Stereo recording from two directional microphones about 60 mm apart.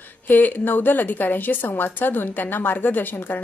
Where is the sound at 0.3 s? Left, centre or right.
Left.